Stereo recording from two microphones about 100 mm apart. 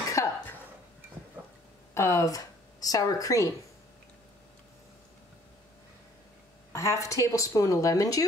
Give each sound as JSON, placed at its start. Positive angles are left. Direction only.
{"t": 0.1, "sound": "cough", "side_deg": 30}
{"t": 2.0, "sound": "speech", "side_deg": 30}
{"t": 6.7, "sound": "speech", "side_deg": 30}